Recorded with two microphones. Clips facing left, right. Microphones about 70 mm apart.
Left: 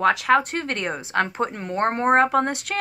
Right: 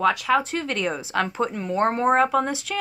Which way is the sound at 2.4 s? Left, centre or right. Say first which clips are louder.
Left 1 dB; left.